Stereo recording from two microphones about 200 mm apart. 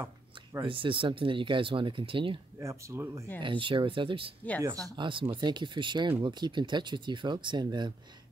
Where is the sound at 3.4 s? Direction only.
25° right (ahead or behind).